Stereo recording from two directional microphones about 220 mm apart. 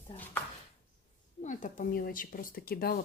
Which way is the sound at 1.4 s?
35° left (ahead or behind).